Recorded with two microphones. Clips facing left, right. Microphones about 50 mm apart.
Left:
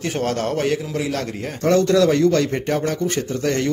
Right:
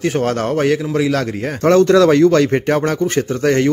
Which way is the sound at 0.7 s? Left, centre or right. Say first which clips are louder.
Right 6 dB; right.